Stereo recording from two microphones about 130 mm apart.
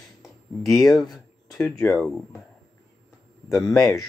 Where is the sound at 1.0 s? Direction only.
30° left (ahead or behind).